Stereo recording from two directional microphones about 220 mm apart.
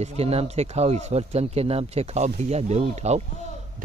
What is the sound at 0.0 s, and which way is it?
Speech, 30° right (ahead or behind).